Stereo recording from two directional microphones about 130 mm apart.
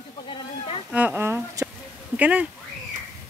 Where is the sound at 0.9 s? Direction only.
15° right (ahead or behind).